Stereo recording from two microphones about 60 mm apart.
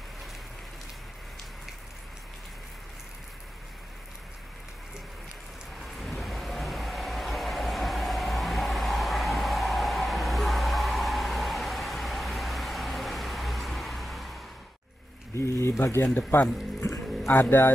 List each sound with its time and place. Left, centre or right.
5.8 s vehicle: centre
15.3 s a sound: left
15.8 s speech: left
16.2 s speech: left